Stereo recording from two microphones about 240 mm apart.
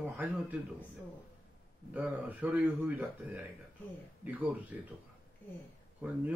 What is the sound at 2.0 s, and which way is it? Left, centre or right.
Speech, centre.